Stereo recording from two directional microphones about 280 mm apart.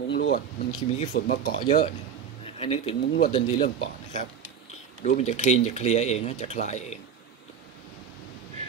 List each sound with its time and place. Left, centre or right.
0.1 s speech: left
0.7 s speech: left
1.1 s speech: left
2.6 s speech: left